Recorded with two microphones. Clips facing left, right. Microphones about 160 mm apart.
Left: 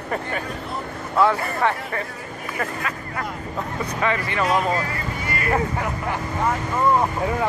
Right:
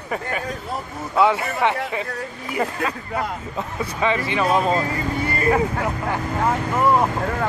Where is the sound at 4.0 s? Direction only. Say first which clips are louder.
Right 2 dB; 20° right (ahead or behind).